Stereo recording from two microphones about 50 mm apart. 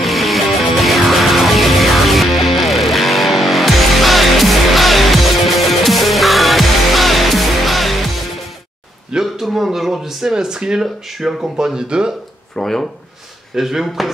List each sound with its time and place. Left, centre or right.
0.0 s music: centre
9.1 s speech: centre
11.1 s speech: centre
11.5 s speech: centre
12.5 s speech: centre
13.6 s speech: centre